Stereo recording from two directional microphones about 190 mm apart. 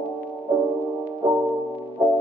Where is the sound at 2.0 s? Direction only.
5° right (ahead or behind).